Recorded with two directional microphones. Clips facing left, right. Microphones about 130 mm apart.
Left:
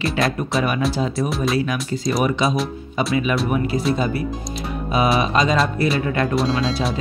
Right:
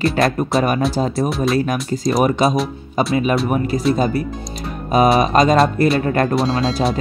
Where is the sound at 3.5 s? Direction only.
40° right (ahead or behind).